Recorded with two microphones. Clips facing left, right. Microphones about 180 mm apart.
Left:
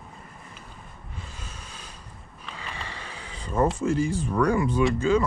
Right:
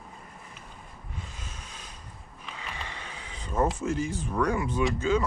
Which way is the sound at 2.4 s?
5° right (ahead or behind).